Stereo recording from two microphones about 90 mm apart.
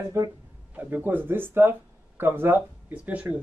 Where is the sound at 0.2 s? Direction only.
30° right (ahead or behind).